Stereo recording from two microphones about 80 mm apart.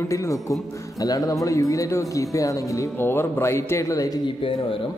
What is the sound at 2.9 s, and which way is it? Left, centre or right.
A man's voice, left.